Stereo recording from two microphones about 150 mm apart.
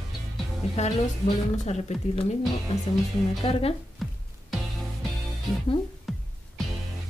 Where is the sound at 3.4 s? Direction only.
40° left (ahead or behind).